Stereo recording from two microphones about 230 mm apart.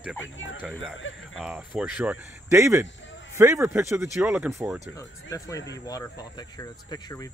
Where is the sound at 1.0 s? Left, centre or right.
Left.